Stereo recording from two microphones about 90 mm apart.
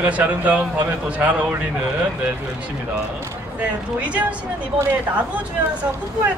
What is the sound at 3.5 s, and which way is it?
Speech, 15° right (ahead or behind).